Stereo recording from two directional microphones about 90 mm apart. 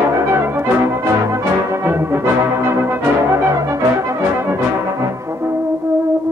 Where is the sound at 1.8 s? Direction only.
25° right (ahead or behind).